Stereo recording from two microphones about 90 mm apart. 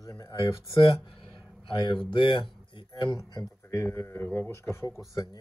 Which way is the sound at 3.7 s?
30° left (ahead or behind).